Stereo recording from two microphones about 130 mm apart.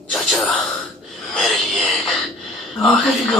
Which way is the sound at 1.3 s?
Centre (ahead or behind).